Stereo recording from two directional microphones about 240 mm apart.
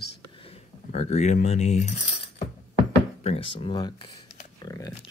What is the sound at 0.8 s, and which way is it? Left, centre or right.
Keys jangling, left.